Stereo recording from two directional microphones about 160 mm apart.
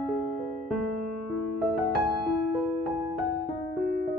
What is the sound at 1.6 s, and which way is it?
Music, centre (ahead or behind).